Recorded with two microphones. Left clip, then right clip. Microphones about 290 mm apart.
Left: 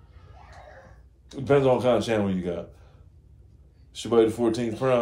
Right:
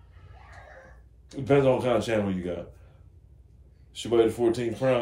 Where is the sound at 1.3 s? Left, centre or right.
Centre.